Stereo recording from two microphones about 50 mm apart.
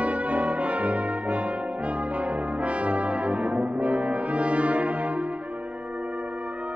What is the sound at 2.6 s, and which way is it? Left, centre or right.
Brass instrument, right.